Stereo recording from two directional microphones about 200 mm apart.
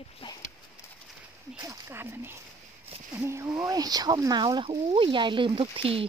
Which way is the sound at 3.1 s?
15° right (ahead or behind).